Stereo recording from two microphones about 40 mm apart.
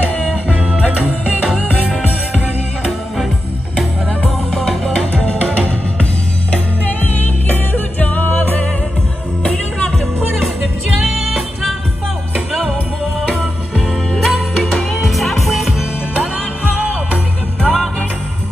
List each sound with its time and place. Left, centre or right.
0.5 s music: right
4.5 s music: centre
5.1 s music: left
7.1 s music: left
11.1 s music: centre
14.1 s music: centre
17.6 s music: centre